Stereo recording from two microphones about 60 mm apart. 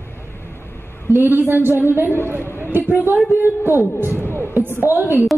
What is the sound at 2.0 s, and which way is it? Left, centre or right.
Speech, left.